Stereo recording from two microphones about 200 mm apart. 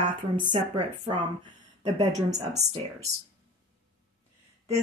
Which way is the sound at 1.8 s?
35° right (ahead or behind).